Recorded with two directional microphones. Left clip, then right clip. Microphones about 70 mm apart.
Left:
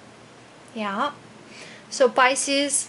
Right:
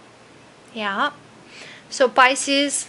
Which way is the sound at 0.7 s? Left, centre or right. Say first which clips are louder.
Right 3 dB; right.